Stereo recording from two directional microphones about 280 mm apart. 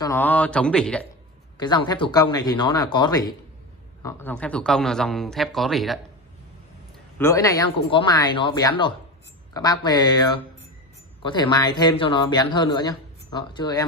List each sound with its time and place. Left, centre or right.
0.0 s speech: centre
1.6 s speech: centre
7.2 s speech: centre